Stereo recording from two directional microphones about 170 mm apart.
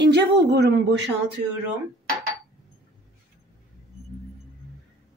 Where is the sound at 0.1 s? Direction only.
80° right.